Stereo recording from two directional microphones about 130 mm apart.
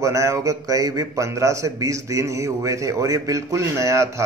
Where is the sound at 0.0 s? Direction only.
25° right (ahead or behind).